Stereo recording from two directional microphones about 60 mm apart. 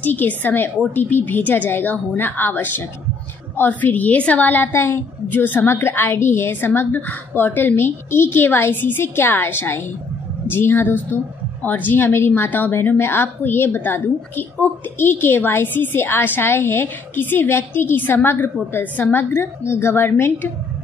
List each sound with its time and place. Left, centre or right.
0.0 s a woman's voice: left
4.7 s a woman's voice: left
5.6 s a woman's voice: left
19.3 s a woman's voice: left